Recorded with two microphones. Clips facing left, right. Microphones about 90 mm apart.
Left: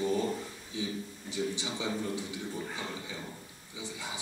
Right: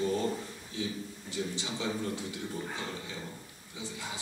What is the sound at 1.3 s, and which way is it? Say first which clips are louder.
Speech: left 1 dB; 15° left (ahead or behind).